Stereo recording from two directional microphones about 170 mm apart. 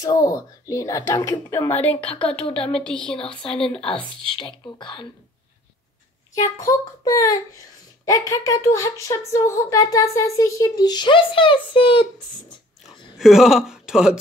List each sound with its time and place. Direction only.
0.0 s speech: 20° left (ahead or behind); by 3.8 s 5° left (ahead or behind)
3.8 s speech: 30° left (ahead or behind)
6.3 s speech: 20° left (ahead or behind)
13.2 s speech: centre (ahead or behind)